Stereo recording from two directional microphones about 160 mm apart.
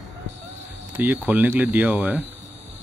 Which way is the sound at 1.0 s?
10° right (ahead or behind).